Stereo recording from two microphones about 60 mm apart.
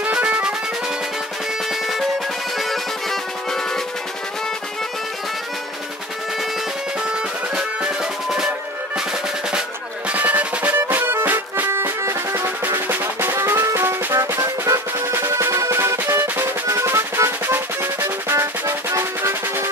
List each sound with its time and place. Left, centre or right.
0.0 s music: centre
1.7 s music: centre
7.0 s music: centre
8.9 s drum: centre
10.0 s drum: right
10.8 s music: right
12.4 s music: right
16.1 s drum: right